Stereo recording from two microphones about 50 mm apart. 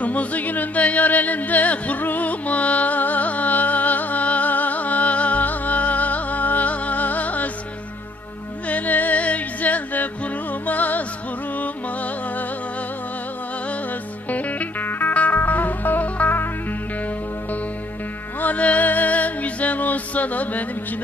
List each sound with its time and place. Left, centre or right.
0.0 s music: left
8.6 s music: left
14.3 s music: left
18.4 s music: left